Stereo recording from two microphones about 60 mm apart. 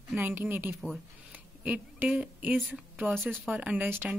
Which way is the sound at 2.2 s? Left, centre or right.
Right.